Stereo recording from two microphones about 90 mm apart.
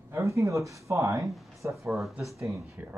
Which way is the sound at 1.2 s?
Centre (ahead or behind).